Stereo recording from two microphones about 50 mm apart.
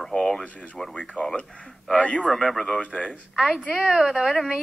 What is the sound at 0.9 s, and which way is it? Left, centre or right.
Speech, left.